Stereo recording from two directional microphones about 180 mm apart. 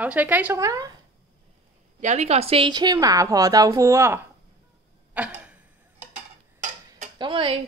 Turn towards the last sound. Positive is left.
turn(degrees=-30)  # may be behind; listen again after turning